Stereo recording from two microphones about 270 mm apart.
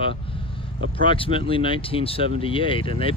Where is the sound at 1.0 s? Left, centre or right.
Centre.